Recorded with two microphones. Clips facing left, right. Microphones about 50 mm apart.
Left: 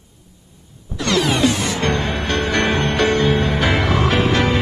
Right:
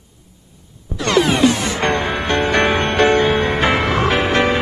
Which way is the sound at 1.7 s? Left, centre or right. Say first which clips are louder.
Right 2 dB; right.